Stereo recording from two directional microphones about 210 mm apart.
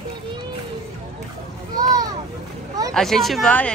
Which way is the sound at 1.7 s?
20° right (ahead or behind).